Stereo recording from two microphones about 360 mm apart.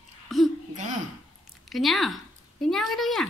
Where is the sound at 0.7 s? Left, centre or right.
Centre.